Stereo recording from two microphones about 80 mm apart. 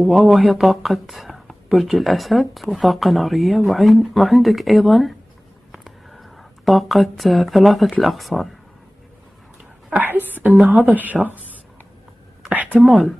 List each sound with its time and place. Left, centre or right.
0.0 s speech: centre
5.7 s a sound: centre
8.0 s speech: centre
9.9 s speech: right
12.7 s speech: centre